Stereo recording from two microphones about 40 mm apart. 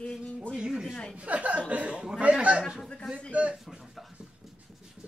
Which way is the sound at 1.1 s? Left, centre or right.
Right.